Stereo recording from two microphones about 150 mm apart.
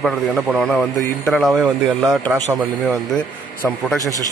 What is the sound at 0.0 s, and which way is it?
A man's voice, centre (ahead or behind).